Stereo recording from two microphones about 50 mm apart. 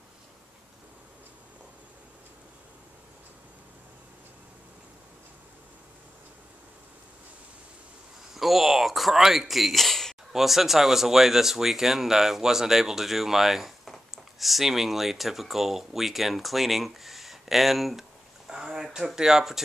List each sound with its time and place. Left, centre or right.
8.4 s speech: centre
18.5 s speech: centre